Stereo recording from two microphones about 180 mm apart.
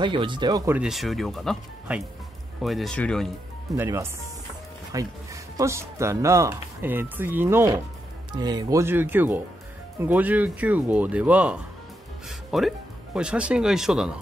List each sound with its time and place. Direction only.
0.0 s speech: 25° right (ahead or behind)
0.7 s speech: centre (ahead or behind)
3.7 s speech: 15° right (ahead or behind)